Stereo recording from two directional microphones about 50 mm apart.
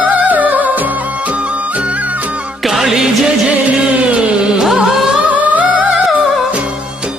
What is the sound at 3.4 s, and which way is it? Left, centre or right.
Music, right.